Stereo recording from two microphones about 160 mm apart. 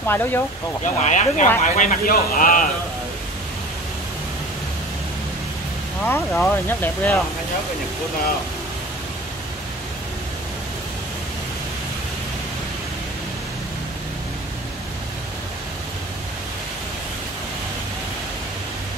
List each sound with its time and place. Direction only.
0.0 s speech: 15° left (ahead or behind)
0.8 s a man's voice: 50° left (ahead or behind)
6.0 s speech: 10° left (ahead or behind)